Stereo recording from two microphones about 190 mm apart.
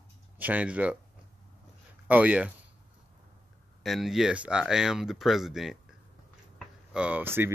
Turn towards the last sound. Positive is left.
turn(degrees=-10)  # may be behind; listen again after turning